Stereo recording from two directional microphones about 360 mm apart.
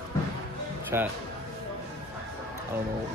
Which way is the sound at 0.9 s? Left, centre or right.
Centre.